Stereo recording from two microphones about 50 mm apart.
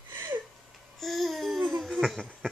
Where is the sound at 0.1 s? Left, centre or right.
Right.